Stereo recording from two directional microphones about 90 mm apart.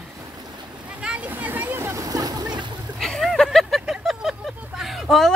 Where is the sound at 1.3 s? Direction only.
20° right (ahead or behind); by 2.6 s 50° right (ahead or behind).